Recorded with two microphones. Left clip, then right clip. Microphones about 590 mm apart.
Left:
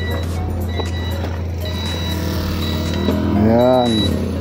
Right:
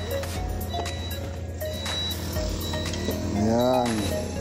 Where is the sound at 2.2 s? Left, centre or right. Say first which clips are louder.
Left 7 dB; centre.